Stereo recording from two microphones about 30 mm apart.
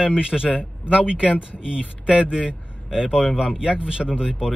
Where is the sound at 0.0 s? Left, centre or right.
Right.